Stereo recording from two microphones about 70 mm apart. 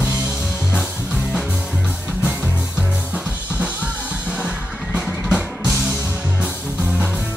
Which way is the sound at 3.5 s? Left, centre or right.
Right.